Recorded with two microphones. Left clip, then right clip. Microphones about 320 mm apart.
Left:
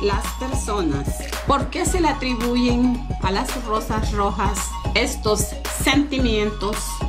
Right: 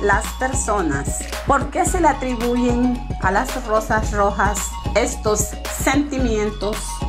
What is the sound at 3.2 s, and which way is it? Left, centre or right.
Speech, centre.